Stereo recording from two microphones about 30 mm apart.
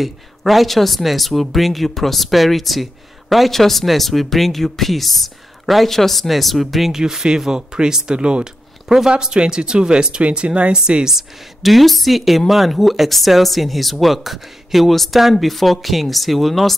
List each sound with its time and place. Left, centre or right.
0.0 s speech: centre
6.9 s speech: centre
8.8 s speech: centre
9.2 s speech: right
11.1 s speech: centre